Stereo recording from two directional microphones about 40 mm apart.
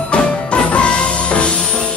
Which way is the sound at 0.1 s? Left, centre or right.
Left.